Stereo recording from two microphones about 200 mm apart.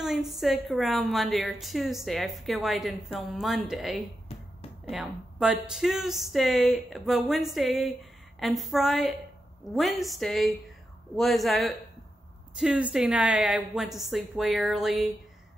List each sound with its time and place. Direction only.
0.0 s a woman's voice: centre (ahead or behind)
4.3 s music: 30° left (ahead or behind)
4.8 s a woman's voice: 5° right (ahead or behind)